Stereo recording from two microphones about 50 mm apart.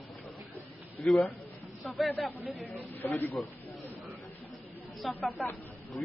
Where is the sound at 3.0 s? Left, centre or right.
Left.